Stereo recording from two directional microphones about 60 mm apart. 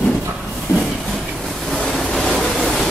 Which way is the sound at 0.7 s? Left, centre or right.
Left.